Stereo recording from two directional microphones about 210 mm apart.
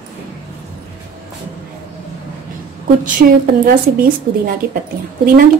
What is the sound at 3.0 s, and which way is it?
A woman's voice, 40° right (ahead or behind).